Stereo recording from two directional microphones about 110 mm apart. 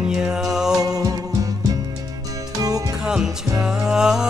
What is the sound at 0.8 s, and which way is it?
Music, 35° right (ahead or behind).